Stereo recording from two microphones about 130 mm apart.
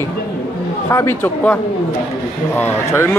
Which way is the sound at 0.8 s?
20° left (ahead or behind).